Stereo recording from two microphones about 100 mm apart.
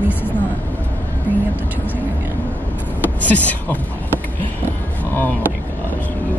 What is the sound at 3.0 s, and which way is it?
Speech, 15° left (ahead or behind).